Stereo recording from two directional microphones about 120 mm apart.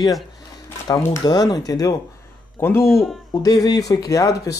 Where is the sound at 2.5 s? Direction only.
20° left (ahead or behind).